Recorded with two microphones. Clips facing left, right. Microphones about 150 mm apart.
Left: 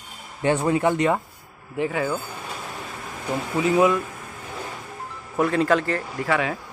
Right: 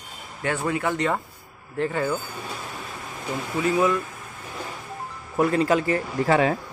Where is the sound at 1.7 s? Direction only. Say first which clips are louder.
Even; 5° left (ahead or behind).